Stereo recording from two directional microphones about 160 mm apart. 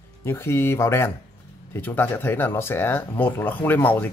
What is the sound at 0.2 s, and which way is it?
Speech, 15° left (ahead or behind).